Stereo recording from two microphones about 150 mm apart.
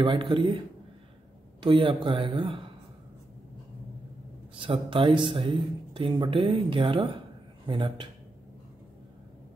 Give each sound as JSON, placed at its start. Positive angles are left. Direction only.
{"t": 0.0, "sound": "speech", "side_deg": -35}
{"t": 1.6, "sound": "speech", "side_deg": -30}
{"t": 4.6, "sound": "speech", "side_deg": -35}